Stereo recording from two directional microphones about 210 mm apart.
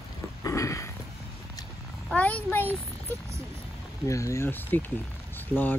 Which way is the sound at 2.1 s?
5° left (ahead or behind).